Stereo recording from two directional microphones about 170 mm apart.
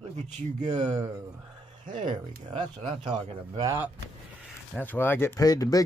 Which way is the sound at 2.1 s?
30° right (ahead or behind).